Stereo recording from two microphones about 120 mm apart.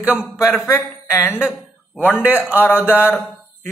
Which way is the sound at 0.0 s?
10° right (ahead or behind).